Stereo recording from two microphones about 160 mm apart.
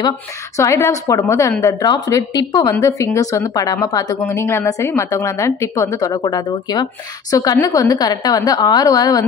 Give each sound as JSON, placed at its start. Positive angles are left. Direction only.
{"t": 0.6, "sound": "speech", "side_deg": 20}